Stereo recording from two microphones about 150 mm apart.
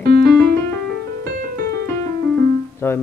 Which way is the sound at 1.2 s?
70° right (ahead or behind).